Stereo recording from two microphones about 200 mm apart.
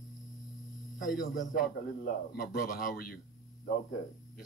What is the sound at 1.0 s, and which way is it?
A man's voice, 40° left (ahead or behind).